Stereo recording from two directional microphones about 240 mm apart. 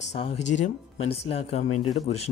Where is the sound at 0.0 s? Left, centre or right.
Left.